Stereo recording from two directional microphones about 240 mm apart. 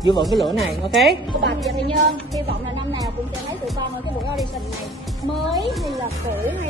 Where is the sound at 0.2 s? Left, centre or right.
Centre.